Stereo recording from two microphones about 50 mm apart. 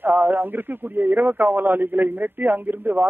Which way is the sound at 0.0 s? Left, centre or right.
Right.